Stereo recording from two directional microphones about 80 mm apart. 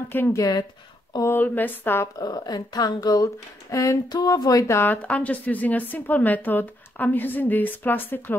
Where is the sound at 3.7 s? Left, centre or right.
Left.